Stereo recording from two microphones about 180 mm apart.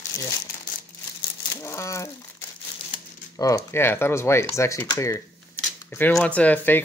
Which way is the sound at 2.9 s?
20° left (ahead or behind).